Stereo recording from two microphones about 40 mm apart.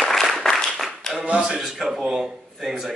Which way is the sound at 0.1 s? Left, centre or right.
Centre.